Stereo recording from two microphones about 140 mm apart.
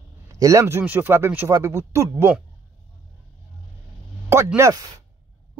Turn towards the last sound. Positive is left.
turn(degrees=-20)  # may be behind; listen again after turning